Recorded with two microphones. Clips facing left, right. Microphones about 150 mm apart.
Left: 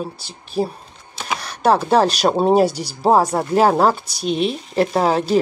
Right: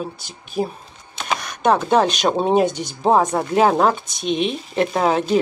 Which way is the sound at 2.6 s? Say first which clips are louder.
Left 2 dB; 35° left (ahead or behind).